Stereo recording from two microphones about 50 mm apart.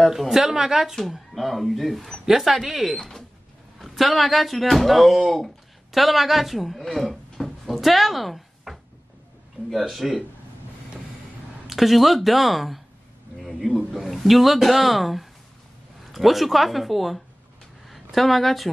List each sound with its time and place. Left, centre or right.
0.1 s speech: centre
1.3 s speech: centre
3.0 s speech: centre
11.6 s speech: centre
13.4 s a sound: centre
13.7 s speech: centre